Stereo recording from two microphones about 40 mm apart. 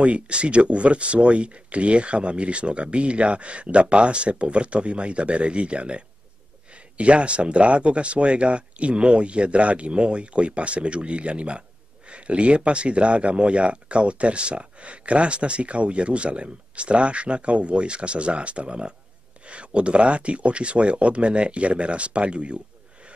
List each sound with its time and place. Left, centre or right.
0.0 s speech: right